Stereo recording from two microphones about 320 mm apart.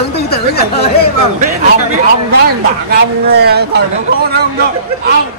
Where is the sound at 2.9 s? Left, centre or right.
Right.